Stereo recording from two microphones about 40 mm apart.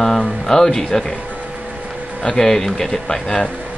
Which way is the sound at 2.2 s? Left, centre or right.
Centre.